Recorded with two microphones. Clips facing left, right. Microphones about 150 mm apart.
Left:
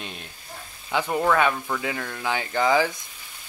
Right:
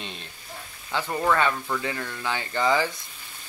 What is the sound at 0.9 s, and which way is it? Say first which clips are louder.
Speech: left 2 dB; 15° left (ahead or behind).